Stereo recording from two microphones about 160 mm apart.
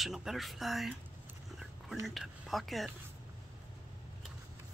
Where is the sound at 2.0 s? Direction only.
Centre (ahead or behind).